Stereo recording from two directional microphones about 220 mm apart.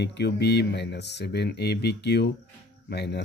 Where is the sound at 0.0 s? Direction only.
50° left (ahead or behind).